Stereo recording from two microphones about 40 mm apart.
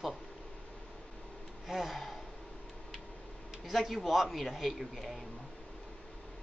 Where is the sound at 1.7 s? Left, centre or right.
Centre.